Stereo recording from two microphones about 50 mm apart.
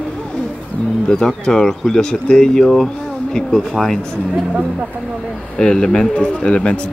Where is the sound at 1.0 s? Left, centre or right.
Centre.